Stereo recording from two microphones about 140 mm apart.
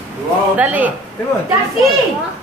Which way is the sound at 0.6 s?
10° right (ahead or behind).